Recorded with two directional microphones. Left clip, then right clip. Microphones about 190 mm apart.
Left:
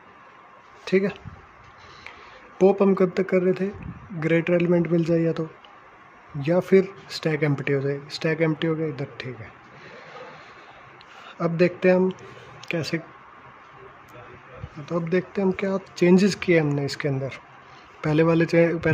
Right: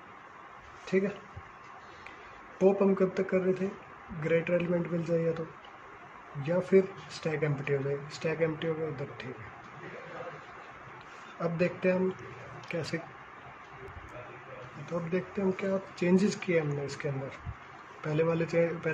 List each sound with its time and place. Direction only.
0.8 s speech: 65° left (ahead or behind)
2.6 s speech: 60° left (ahead or behind)
6.4 s speech: 60° left (ahead or behind)
11.3 s speech: 60° left (ahead or behind)
12.6 s speech: 55° left (ahead or behind)
14.9 s speech: 60° left (ahead or behind)